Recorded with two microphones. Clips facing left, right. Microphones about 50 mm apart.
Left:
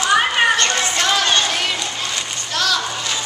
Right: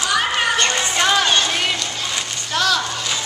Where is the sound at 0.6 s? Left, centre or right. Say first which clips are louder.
Even; centre.